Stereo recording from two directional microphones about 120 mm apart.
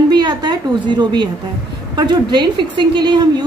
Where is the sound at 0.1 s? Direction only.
40° right (ahead or behind).